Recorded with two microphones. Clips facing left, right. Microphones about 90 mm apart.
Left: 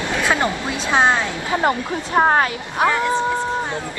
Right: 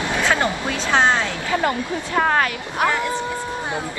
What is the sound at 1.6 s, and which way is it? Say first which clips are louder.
Speech: left 3 dB; 30° left (ahead or behind).